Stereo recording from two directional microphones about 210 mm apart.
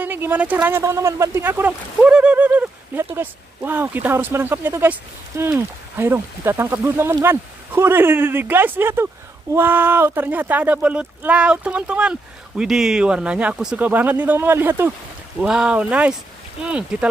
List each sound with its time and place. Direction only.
0.0 s speech: 10° right (ahead or behind)